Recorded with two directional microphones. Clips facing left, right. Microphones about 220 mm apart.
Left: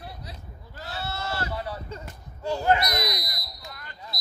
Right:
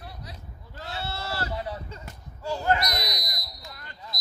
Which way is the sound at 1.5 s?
20° right (ahead or behind).